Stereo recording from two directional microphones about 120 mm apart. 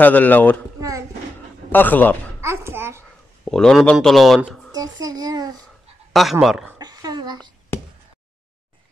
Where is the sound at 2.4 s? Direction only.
20° right (ahead or behind).